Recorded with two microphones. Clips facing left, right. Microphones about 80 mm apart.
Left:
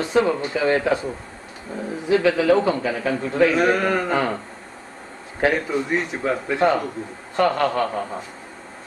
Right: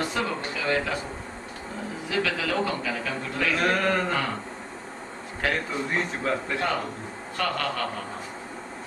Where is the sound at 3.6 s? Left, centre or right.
Centre.